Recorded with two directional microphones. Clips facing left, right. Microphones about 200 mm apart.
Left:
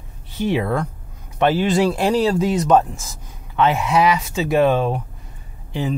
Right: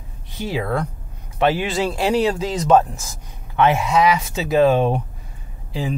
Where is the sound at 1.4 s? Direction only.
10° right (ahead or behind).